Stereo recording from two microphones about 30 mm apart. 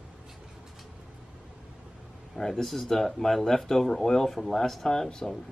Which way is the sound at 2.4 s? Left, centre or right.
Centre.